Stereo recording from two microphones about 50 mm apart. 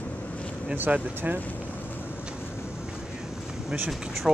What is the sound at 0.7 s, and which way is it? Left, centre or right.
Speech, right.